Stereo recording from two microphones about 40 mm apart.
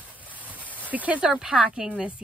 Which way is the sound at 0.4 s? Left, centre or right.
Right.